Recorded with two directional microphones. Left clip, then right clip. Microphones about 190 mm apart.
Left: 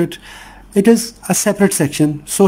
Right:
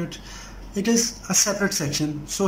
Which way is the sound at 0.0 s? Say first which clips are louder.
Left 13 dB; 45° left (ahead or behind).